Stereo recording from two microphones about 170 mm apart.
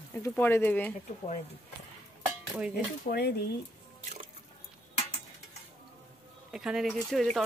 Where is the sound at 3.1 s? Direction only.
75° left (ahead or behind).